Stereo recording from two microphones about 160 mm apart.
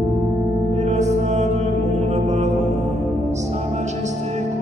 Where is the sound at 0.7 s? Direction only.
45° right (ahead or behind).